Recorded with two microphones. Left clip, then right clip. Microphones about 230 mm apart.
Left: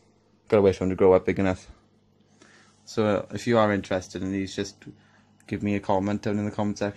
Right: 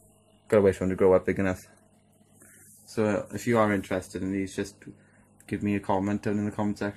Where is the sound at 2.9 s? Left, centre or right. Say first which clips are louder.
Left 3 dB; centre.